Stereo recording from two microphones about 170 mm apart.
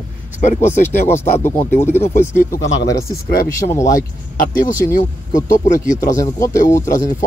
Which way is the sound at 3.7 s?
20° left (ahead or behind).